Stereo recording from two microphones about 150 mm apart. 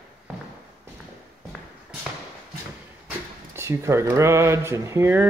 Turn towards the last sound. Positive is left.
turn(degrees=-15)  # may be behind; listen again after turning